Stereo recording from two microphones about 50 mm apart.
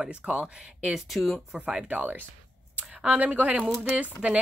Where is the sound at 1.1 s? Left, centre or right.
Centre.